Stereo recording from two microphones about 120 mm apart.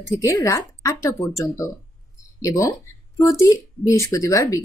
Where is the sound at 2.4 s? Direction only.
25° left (ahead or behind).